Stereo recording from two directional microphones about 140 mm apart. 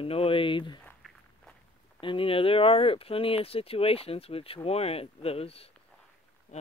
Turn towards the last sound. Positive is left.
turn(degrees=45)  # may be behind; listen again after turning